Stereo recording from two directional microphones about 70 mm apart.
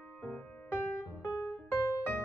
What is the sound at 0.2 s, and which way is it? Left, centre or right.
Music, left.